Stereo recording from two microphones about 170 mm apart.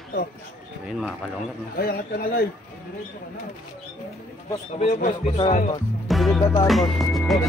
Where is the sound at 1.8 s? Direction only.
60° left (ahead or behind).